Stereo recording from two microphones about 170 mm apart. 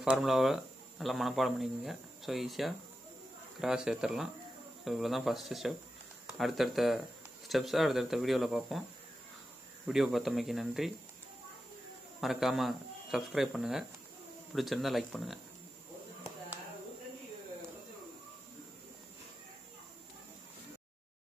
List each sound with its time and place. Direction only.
0.0 s speech: centre (ahead or behind)
9.8 s speech: centre (ahead or behind)
12.2 s speech: centre (ahead or behind)